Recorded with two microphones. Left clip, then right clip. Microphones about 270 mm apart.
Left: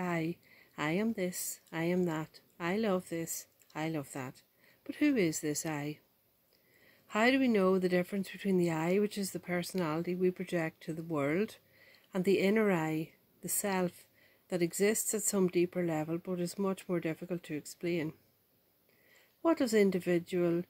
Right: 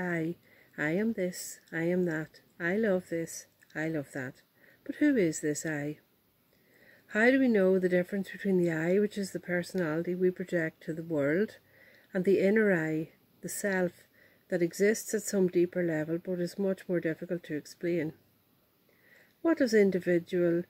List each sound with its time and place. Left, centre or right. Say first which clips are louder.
0.0 s a sound: right 2 dB; centre
0.7 s speech: right 3 dB; centre
7.1 s speech: right 3 dB; centre
19.4 s speech: right 3 dB; centre